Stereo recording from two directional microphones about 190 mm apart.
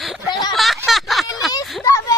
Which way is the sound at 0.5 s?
Centre (ahead or behind).